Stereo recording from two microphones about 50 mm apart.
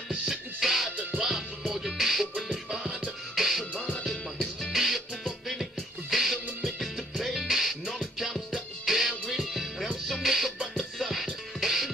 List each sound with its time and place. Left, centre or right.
0.1 s music: centre
3.7 s music: left
4.0 s music: centre
4.7 s music: centre